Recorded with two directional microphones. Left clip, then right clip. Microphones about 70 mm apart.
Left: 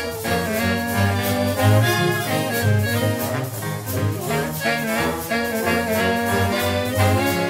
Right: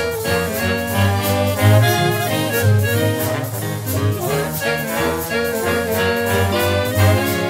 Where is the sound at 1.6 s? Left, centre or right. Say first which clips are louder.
Right 3 dB; right.